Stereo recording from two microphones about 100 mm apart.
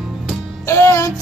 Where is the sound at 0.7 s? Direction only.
30° left (ahead or behind).